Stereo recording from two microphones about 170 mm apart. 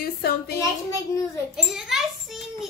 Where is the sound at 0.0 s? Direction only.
65° left (ahead or behind).